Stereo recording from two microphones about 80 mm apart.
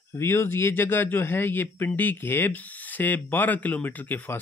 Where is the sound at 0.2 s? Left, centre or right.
Left.